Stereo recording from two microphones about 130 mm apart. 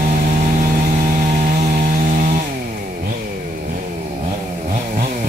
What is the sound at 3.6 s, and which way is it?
Chainsaw, 65° right (ahead or behind).